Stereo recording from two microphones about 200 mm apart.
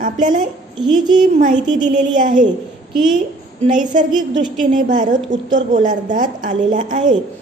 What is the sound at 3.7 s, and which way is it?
A woman's voice, 40° right (ahead or behind).